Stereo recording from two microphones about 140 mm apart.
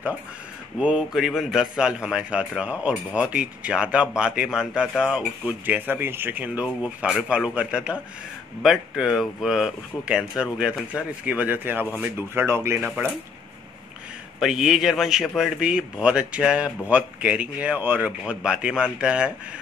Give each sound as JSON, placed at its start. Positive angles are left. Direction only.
{"t": 0.7, "sound": "a man's voice", "side_deg": -5}
{"t": 12.8, "sound": "a man's voice", "side_deg": -5}
{"t": 14.4, "sound": "a man's voice", "side_deg": 0}